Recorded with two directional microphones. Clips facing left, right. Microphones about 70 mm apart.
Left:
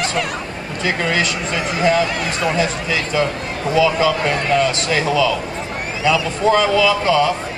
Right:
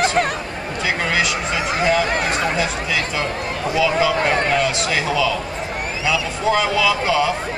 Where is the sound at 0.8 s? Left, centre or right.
Centre.